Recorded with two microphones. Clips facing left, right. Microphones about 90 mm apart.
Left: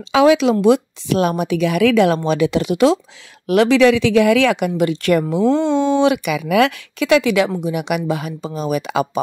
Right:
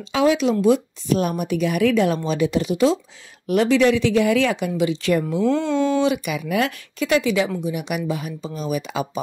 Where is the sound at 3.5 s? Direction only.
90° left; by 4.7 s 75° left (ahead or behind).